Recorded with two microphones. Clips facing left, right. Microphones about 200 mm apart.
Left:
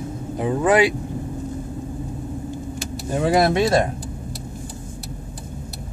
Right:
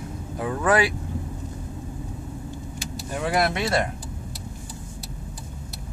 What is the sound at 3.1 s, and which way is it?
Speech, 25° left (ahead or behind).